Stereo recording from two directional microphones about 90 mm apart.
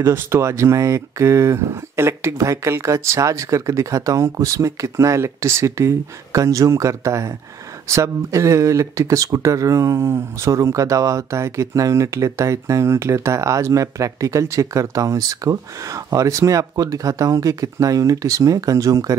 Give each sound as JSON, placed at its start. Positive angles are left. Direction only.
{"t": 0.0, "sound": "speech", "side_deg": -30}